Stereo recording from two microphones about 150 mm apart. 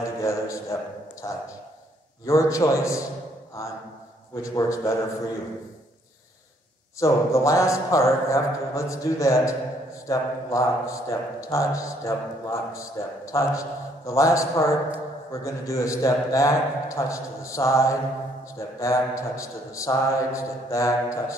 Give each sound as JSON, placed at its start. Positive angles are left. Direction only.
{"t": 0.0, "sound": "a sound", "side_deg": 20}
{"t": 1.2, "sound": "speech", "side_deg": 25}
{"t": 4.4, "sound": "speech", "side_deg": 20}
{"t": 7.0, "sound": "speech", "side_deg": 20}